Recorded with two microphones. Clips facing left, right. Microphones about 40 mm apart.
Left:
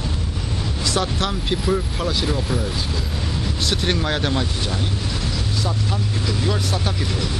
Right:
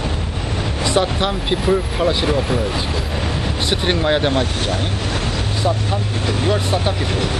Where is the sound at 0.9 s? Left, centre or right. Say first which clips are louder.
Right 5 dB; right.